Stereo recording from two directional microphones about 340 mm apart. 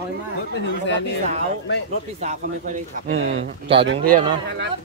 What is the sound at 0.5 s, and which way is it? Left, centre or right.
Speech, left.